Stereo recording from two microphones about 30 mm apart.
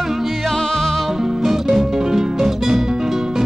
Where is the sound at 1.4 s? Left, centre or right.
Centre.